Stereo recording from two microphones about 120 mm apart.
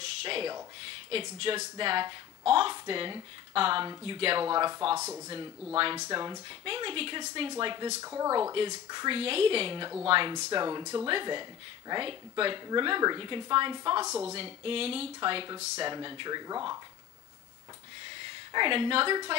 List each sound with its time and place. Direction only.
0.0 s a sound: 50° right (ahead or behind)
1.1 s speech: 50° right (ahead or behind)
4.5 s speech: 35° right (ahead or behind)
4.9 s speech: 20° right (ahead or behind)
5.9 s speech: 35° right (ahead or behind)
6.6 s speech: 45° right (ahead or behind)
8.0 s speech: 25° right (ahead or behind)
9.1 s speech: 50° right (ahead or behind)
10.3 s speech: 35° right (ahead or behind)
11.1 s speech: 40° right (ahead or behind)
15.1 s speech: 40° right (ahead or behind)
18.5 s speech: 45° right (ahead or behind)